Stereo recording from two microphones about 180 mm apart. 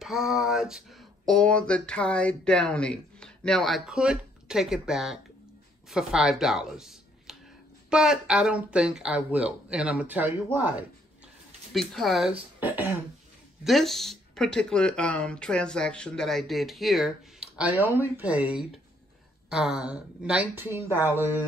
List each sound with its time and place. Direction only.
0.0 s speech: centre (ahead or behind)
11.7 s speech: centre (ahead or behind)
13.7 s speech: centre (ahead or behind)